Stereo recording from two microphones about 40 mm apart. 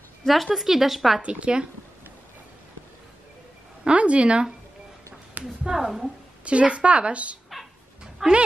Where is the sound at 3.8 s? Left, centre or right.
Right.